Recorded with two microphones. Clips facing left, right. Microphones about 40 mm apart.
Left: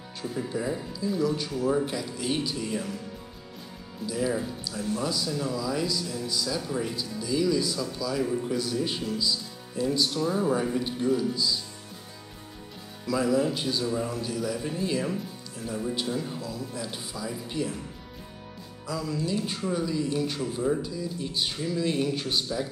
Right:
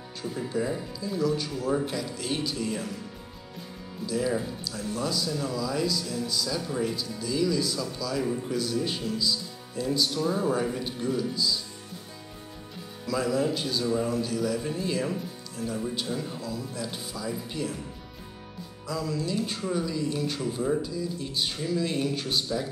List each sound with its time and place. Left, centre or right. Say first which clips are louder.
0.2 s speech: right 1 dB; centre
4.0 s speech: even; centre
13.0 s speech: left 2 dB; centre
16.3 s speech: right 1 dB; left
16.8 s speech: right 1 dB; centre
18.9 s speech: even; centre